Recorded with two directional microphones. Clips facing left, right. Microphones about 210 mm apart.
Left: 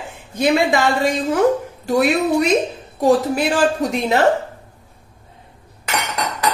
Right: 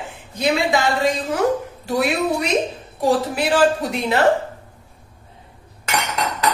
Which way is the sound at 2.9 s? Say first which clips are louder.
Left 4 dB; 45° left (ahead or behind).